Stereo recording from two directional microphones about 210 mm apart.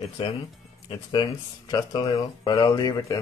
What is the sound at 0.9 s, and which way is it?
Speech, 20° left (ahead or behind).